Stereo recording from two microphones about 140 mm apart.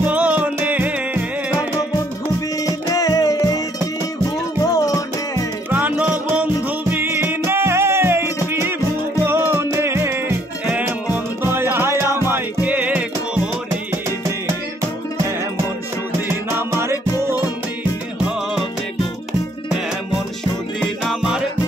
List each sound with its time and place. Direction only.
0.1 s music: 10° right (ahead or behind)
2.6 s music: 25° left (ahead or behind)
5.7 s music: 10° right (ahead or behind)
16.3 s music: 20° right (ahead or behind)
21.0 s music: 5° right (ahead or behind)